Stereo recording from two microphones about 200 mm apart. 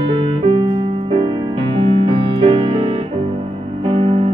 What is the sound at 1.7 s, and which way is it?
Music, 25° right (ahead or behind).